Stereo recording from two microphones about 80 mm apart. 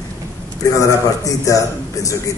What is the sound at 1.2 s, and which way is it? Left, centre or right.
Speech, left.